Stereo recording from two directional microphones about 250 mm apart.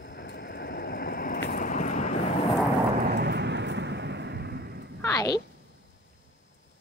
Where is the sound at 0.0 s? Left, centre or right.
Left.